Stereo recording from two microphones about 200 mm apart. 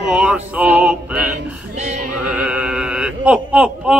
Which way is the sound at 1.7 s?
35° right (ahead or behind).